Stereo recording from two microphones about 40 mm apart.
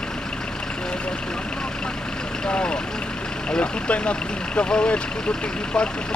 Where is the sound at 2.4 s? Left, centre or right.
Left.